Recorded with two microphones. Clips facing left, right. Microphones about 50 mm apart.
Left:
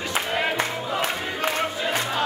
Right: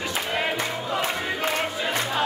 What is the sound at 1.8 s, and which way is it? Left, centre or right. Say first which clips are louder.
Music: even; centre.